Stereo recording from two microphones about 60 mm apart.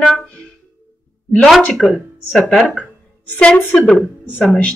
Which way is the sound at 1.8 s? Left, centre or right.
Centre.